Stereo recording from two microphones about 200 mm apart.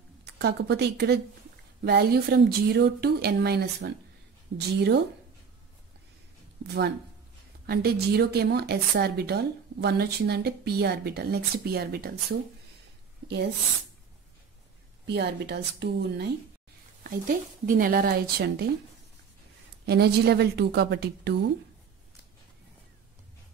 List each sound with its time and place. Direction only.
0.2 s a woman's voice: 55° right (ahead or behind)
7.6 s speech: 50° right (ahead or behind)
15.0 s a woman's voice: 55° right (ahead or behind)
17.0 s speech: 45° right (ahead or behind)
19.9 s speech: 55° right (ahead or behind)